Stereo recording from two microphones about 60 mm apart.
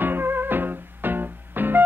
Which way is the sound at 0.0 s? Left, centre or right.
Right.